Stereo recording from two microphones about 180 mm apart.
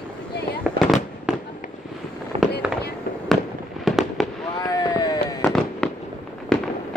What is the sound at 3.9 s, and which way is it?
Fireworks, centre (ahead or behind).